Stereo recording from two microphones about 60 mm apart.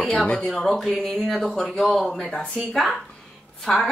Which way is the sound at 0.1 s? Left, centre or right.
Centre.